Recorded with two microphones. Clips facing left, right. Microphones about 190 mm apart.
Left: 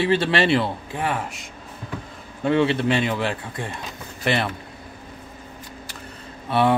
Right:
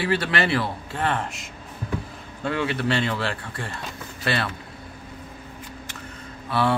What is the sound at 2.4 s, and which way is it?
Speech, 25° left (ahead or behind).